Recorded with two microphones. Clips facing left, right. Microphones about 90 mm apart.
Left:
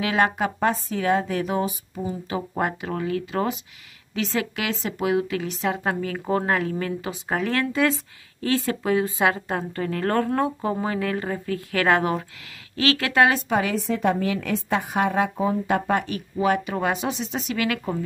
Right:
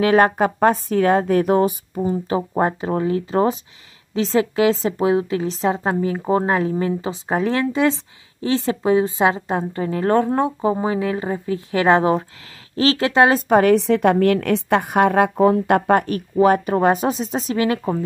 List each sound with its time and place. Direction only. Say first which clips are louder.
0.0 s a woman's voice: right 7 dB; 40° right (ahead or behind)
13.5 s a woman's voice: right 10 dB; 50° right (ahead or behind)
13.7 s a woman's voice: right 7 dB; 70° right (ahead or behind); by 17.9 s 30° right (ahead or behind)